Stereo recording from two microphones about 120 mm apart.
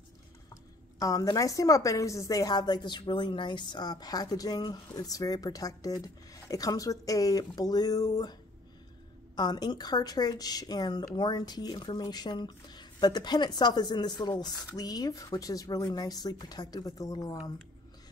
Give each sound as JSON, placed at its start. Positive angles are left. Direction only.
{"t": 0.9, "sound": "speech", "side_deg": 30}